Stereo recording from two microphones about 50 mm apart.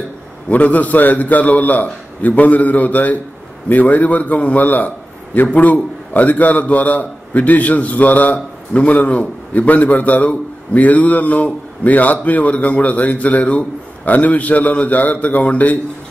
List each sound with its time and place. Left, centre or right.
0.5 s a man's voice: left